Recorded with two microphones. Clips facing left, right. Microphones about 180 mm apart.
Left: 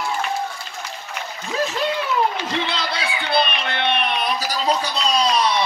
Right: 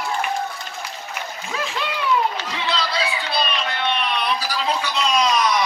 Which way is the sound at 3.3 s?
55° left (ahead or behind).